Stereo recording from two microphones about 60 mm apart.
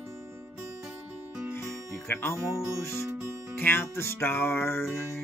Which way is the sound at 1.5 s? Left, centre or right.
Left.